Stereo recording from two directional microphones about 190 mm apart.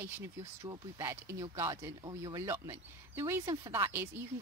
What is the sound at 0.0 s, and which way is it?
Speech, 15° right (ahead or behind).